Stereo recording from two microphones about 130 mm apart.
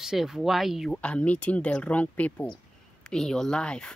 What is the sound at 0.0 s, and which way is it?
Speech, 5° right (ahead or behind).